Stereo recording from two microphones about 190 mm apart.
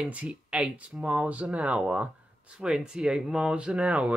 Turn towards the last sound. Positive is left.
turn(degrees=-5)  # may be behind; listen again after turning